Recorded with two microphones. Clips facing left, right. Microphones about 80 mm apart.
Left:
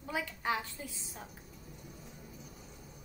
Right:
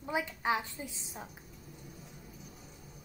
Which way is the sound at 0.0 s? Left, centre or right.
Right.